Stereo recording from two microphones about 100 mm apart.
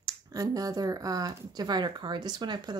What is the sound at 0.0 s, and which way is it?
A woman's voice, 35° right (ahead or behind).